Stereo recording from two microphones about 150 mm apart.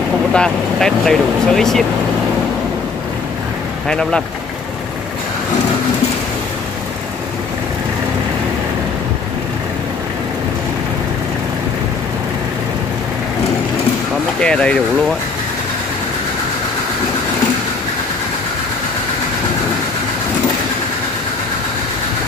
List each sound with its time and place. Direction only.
0.3 s speech: 5° left (ahead or behind)
3.9 s speech: 5° left (ahead or behind)
14.4 s speech: 5° left (ahead or behind)